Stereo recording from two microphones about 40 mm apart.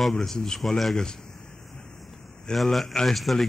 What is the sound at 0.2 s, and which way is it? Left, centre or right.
Speech, centre.